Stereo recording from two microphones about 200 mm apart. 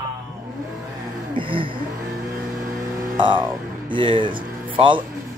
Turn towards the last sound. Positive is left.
turn(degrees=-25)  # may be behind; listen again after turning